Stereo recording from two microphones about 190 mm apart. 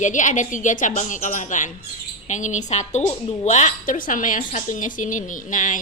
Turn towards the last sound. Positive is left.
turn(degrees=40)  # may be behind; listen again after turning